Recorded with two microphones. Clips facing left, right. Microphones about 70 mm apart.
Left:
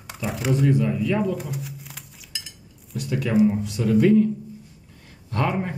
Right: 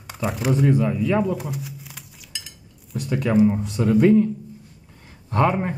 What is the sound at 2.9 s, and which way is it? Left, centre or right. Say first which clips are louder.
Speech: right 2 dB; right.